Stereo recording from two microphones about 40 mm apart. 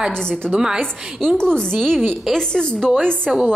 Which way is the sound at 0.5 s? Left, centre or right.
Centre.